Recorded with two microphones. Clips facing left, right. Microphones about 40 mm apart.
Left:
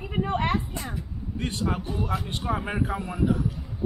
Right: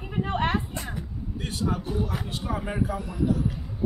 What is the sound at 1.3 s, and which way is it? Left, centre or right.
Speech, left.